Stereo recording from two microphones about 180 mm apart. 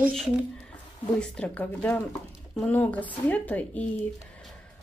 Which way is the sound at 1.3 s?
5° left (ahead or behind).